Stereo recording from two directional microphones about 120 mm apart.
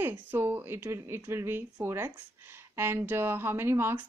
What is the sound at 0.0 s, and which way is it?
Speech, 15° right (ahead or behind).